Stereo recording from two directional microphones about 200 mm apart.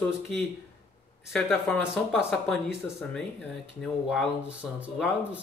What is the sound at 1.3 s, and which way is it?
Speech, centre (ahead or behind).